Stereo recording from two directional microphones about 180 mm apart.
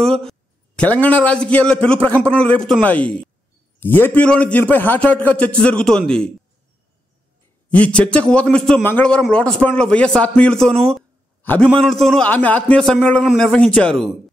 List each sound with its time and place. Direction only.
0.0 s a man's voice: centre (ahead or behind)
7.7 s a man's voice: 5° left (ahead or behind)